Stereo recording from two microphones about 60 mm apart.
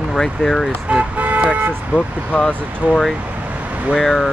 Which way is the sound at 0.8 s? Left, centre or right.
Right.